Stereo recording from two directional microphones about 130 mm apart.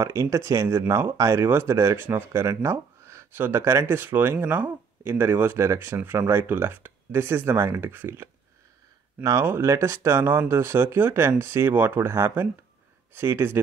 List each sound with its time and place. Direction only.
0.0 s speech: 25° right (ahead or behind)